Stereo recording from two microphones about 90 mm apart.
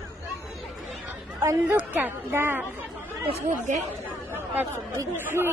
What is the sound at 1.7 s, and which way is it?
Speech, 20° right (ahead or behind).